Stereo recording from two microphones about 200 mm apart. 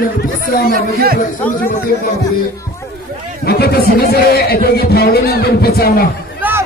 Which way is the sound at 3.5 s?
50° left (ahead or behind).